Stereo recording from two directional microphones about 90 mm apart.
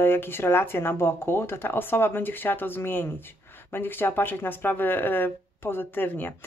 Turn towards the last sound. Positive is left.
turn(degrees=25)  # may be behind; listen again after turning